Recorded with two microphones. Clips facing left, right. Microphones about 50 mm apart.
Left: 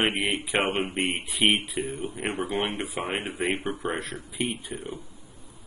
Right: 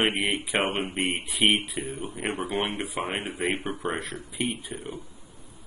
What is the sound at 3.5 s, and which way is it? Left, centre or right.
Speech, right.